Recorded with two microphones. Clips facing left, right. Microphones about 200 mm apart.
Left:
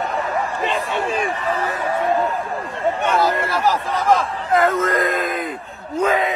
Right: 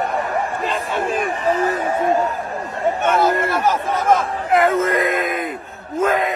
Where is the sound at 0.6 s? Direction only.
Centre (ahead or behind).